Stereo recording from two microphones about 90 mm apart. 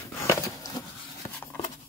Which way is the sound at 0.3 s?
45° left (ahead or behind).